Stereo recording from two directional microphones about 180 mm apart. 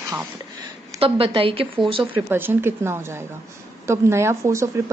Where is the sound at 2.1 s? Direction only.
10° right (ahead or behind).